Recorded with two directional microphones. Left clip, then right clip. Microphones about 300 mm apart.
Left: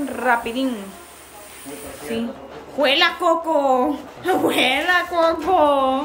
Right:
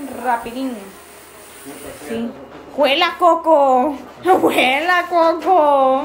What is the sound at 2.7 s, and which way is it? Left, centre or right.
A woman's voice, centre.